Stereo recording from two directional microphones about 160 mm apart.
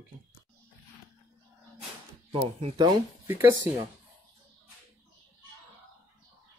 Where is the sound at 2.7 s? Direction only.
25° right (ahead or behind).